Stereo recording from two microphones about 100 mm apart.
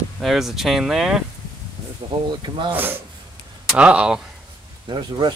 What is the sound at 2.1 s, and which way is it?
Speech, 50° right (ahead or behind).